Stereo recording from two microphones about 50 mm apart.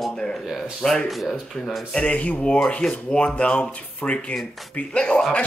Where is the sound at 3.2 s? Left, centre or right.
Left.